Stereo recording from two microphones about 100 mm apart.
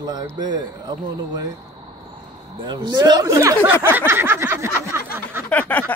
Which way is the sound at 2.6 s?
45° right (ahead or behind).